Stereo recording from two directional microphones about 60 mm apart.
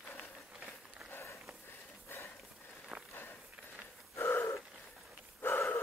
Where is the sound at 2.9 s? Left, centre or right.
Right.